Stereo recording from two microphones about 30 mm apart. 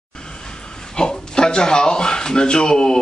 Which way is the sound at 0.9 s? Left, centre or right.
Left.